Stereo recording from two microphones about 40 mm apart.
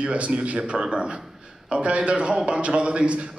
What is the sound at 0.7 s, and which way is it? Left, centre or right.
Speech, centre.